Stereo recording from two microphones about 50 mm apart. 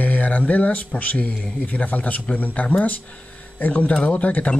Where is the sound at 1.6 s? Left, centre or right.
Left.